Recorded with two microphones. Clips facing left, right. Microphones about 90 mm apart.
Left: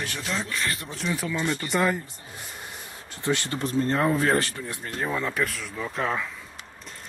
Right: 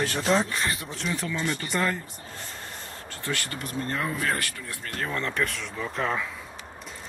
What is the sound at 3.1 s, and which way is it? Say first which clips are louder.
Speech: left 6 dB; 20° left (ahead or behind).